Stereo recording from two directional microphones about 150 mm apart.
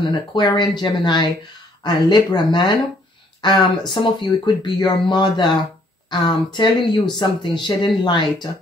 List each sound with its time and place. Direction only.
0.3 s speech: 30° left (ahead or behind)